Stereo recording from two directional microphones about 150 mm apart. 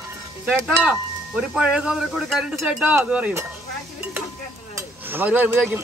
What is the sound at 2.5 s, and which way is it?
Speech, 15° right (ahead or behind).